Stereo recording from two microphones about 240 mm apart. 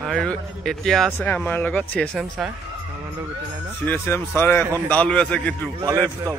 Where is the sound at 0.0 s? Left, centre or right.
Centre.